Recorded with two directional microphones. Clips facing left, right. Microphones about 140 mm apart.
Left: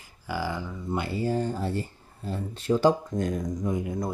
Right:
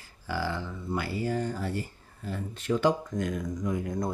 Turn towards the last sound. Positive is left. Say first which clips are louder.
# even
turn(degrees=5)  # may be behind; listen again after turning